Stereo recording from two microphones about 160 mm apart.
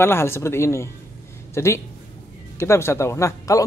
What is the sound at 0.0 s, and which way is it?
Speech, 15° left (ahead or behind).